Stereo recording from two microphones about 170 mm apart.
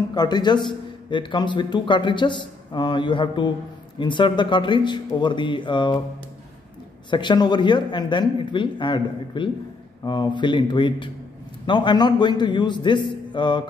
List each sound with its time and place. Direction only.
0.1 s a man's voice: 25° left (ahead or behind)
7.1 s a man's voice: 25° left (ahead or behind)